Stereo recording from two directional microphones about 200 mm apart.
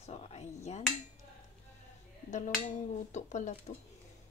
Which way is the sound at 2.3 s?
40° left (ahead or behind).